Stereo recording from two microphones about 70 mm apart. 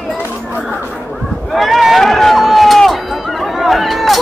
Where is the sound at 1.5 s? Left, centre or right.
Centre.